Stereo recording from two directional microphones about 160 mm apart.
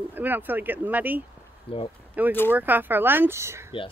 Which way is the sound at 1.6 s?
35° left (ahead or behind).